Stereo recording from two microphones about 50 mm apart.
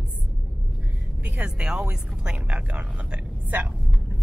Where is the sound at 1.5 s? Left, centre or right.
Centre.